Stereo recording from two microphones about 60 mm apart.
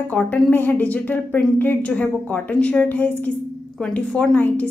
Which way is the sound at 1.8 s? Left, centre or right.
Left.